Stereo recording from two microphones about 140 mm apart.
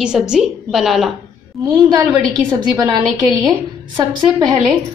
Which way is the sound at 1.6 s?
25° right (ahead or behind).